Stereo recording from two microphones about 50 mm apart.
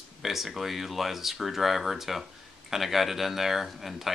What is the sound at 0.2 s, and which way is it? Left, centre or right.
Speech, centre.